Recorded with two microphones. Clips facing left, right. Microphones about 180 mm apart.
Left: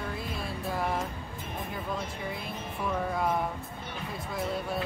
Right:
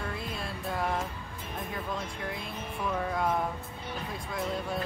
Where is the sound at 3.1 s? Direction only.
Centre (ahead or behind).